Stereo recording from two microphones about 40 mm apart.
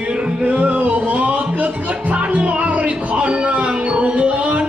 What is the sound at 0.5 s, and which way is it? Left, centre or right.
Music, right.